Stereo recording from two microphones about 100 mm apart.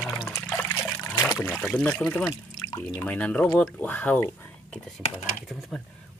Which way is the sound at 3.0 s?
15° left (ahead or behind).